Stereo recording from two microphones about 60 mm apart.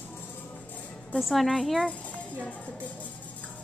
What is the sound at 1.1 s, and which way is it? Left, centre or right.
Speech, centre.